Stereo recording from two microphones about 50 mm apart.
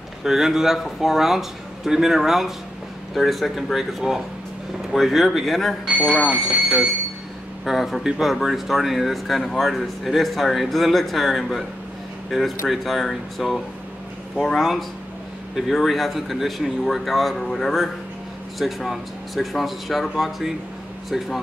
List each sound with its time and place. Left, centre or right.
0.2 s speech: centre
6.2 s speech: centre
7.6 s speech: centre